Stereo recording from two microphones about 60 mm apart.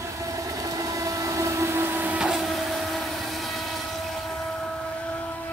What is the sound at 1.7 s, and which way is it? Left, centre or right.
Printer, right.